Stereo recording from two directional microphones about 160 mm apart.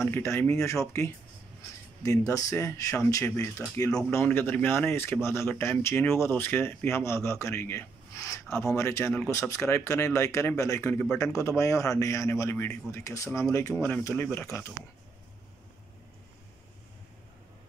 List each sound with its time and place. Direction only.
0.1 s a man's voice: 15° left (ahead or behind)
11.3 s a man's voice: 20° left (ahead or behind)